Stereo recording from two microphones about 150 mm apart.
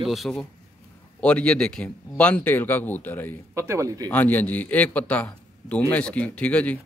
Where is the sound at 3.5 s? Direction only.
20° right (ahead or behind).